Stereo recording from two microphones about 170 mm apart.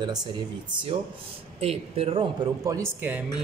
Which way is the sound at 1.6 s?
35° right (ahead or behind).